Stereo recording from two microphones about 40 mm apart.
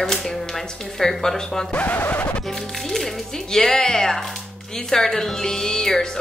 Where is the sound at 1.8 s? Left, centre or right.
Left.